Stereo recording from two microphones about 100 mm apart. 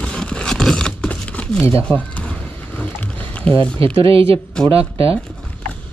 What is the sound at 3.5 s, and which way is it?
Speech, 60° right (ahead or behind).